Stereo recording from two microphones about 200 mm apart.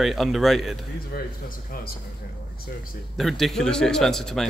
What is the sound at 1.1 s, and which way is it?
Speech, 50° left (ahead or behind).